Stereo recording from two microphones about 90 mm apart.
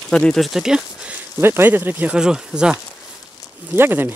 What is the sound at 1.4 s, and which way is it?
Speech, 25° right (ahead or behind).